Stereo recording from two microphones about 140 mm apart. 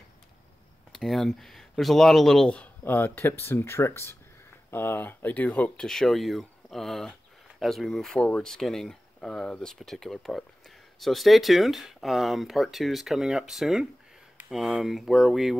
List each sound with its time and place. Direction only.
0.9 s speech: centre (ahead or behind)